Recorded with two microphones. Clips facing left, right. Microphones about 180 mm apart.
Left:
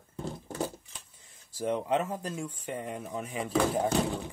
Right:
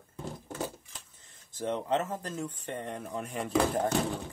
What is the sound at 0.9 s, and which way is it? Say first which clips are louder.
Speech: even; 10° left (ahead or behind).